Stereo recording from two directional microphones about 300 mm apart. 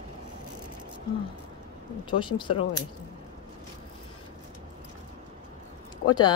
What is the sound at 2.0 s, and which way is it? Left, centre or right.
Speech, centre.